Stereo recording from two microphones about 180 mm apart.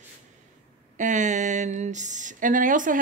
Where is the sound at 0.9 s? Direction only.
45° right (ahead or behind).